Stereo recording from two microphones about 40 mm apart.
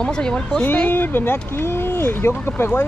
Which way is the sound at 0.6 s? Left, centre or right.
Left.